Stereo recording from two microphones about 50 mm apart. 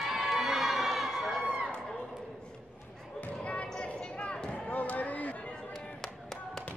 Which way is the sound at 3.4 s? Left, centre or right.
Left.